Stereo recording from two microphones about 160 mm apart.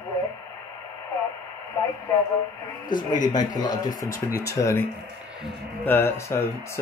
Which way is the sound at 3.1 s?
25° left (ahead or behind).